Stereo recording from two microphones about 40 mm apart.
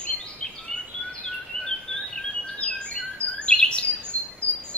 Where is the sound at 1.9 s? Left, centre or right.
Centre.